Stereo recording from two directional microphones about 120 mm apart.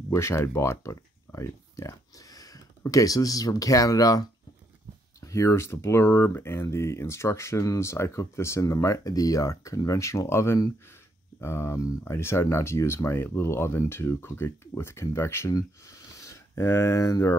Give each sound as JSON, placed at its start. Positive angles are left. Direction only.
{"t": 0.1, "sound": "speech", "side_deg": 25}